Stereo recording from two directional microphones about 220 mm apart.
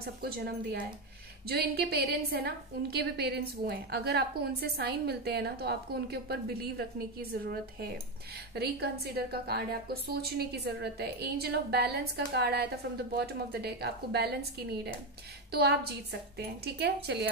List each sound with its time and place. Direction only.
0.0 s a woman's voice: 45° right (ahead or behind)